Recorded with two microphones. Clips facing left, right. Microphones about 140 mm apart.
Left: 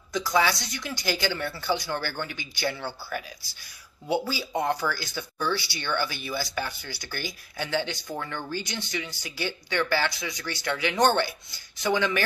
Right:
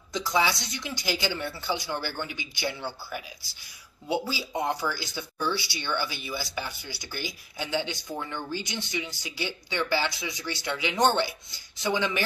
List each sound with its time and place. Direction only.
0.1 s speech: 20° right (ahead or behind)